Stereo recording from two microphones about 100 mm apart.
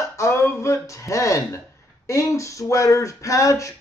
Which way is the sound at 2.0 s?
30° left (ahead or behind).